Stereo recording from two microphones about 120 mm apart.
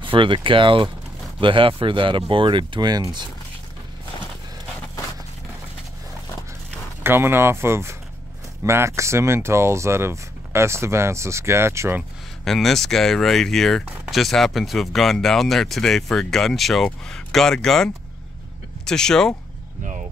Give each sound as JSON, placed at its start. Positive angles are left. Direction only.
{"t": 0.0, "sound": "speech", "side_deg": -45}
{"t": 7.0, "sound": "speech", "side_deg": -20}
{"t": 12.4, "sound": "speech", "side_deg": 5}